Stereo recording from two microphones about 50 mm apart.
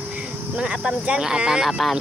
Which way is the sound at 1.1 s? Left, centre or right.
Centre.